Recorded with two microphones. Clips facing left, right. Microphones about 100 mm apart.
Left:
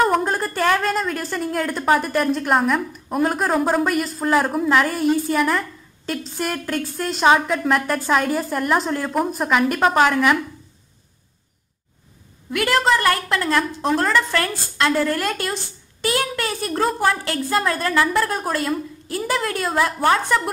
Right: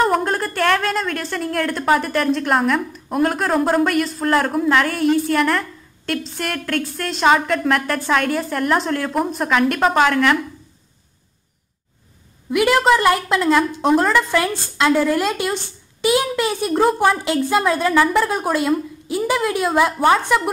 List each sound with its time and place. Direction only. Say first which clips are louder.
0.0 s a woman's voice: right 1 dB; centre (ahead or behind)
12.4 s a woman's voice: right 4 dB; 10° right (ahead or behind)
17.8 s a woman's voice: right 3 dB; centre (ahead or behind)